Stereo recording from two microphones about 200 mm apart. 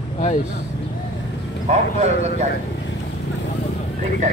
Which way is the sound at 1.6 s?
35° right (ahead or behind).